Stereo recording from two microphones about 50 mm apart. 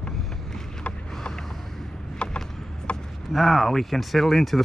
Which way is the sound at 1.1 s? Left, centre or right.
Centre.